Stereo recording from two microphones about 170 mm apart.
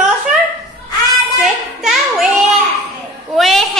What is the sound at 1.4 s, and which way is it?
Speech, centre (ahead or behind).